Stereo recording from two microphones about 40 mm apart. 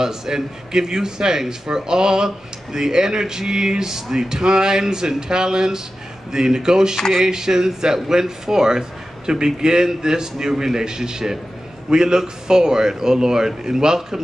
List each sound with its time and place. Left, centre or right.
0.0 s a man's voice: centre
7.0 s speech: centre
7.2 s a man's voice: centre